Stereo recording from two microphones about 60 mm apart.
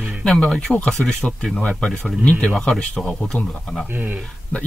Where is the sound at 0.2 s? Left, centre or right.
Centre.